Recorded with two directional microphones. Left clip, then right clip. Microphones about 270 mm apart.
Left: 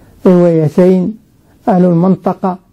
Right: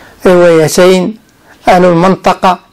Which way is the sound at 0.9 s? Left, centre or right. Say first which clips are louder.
Right 5 dB; centre.